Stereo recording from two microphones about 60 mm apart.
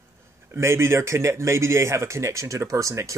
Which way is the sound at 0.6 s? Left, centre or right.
Right.